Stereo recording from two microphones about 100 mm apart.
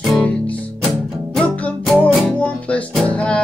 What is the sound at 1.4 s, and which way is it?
Music, 15° left (ahead or behind).